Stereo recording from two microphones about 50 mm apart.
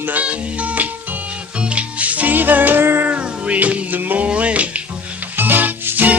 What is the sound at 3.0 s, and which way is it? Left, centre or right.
Music, right.